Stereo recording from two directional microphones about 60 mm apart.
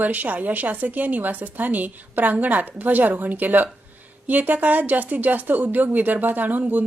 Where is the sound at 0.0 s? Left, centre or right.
Right.